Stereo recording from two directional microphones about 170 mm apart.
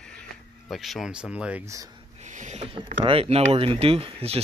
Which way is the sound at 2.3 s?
45° right (ahead or behind).